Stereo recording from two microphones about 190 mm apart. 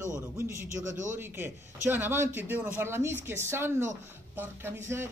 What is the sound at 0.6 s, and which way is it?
Speech, 40° right (ahead or behind).